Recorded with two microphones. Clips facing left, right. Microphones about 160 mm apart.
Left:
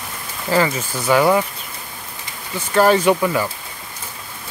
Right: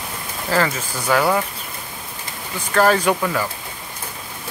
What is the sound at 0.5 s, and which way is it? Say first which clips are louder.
Speech: left 2 dB; 10° left (ahead or behind).